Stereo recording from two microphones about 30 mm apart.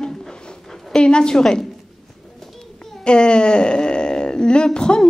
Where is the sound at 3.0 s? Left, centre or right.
Left.